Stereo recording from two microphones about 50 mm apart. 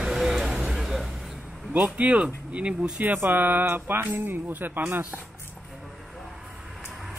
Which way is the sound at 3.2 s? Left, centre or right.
Right.